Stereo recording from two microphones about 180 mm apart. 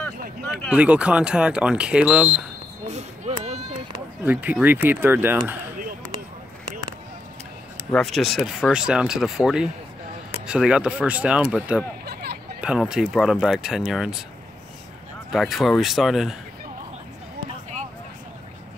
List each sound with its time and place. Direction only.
0.7 s speech: 5° right (ahead or behind)
2.9 s a sound: 35° right (ahead or behind)
4.2 s speech: 10° right (ahead or behind)
7.9 s speech: centre (ahead or behind)
12.1 s a sound: 65° right (ahead or behind)
12.5 s speech: 5° right (ahead or behind)
15.3 s speech: centre (ahead or behind)